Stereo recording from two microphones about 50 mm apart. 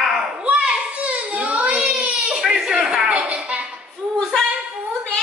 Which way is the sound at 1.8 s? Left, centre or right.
Right.